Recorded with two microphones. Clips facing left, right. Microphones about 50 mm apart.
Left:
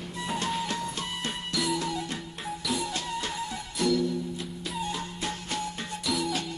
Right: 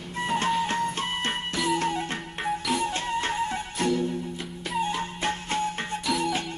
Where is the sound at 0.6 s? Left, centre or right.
Right.